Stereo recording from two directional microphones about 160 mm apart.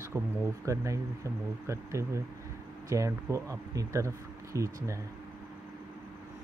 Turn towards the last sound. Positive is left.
turn(degrees=-20)  # may be behind; listen again after turning